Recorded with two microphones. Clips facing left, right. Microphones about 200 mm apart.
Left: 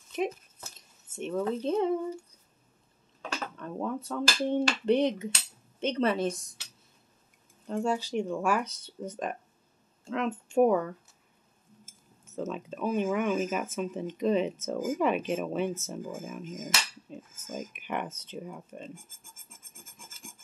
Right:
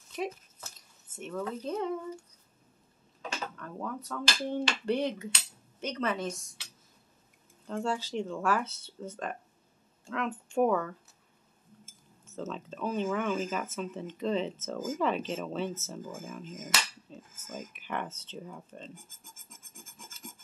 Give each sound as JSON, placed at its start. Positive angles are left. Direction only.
{"t": 0.7, "sound": "speech", "side_deg": 25}
{"t": 3.5, "sound": "a woman's voice", "side_deg": 25}
{"t": 7.6, "sound": "speech", "side_deg": 15}
{"t": 12.4, "sound": "speech", "side_deg": 10}
{"t": 17.1, "sound": "a sound", "side_deg": 15}